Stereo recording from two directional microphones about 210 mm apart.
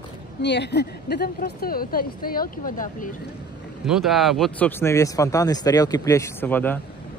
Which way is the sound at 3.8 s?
Centre (ahead or behind).